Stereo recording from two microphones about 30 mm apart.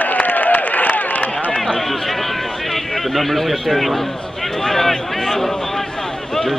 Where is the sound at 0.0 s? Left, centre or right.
Left.